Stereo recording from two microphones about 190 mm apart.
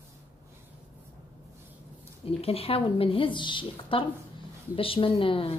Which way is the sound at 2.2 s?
30° left (ahead or behind).